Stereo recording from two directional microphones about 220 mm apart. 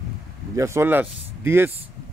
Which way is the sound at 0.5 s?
10° right (ahead or behind).